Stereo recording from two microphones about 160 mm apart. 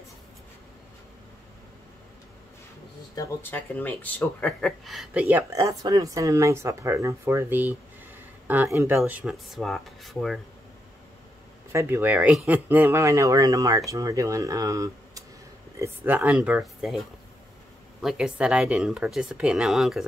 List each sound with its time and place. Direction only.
3.2 s speech: 10° left (ahead or behind); by 5.4 s 10° right (ahead or behind)
5.5 s speech: 20° right (ahead or behind); by 10.4 s centre (ahead or behind)
11.7 s speech: 15° right (ahead or behind)
18.0 s speech: 5° right (ahead or behind)